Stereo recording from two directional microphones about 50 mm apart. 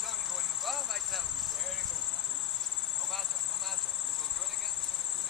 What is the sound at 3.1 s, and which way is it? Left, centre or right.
Cricket, centre.